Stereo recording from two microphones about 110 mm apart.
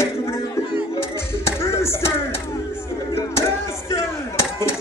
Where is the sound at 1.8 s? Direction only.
25° left (ahead or behind).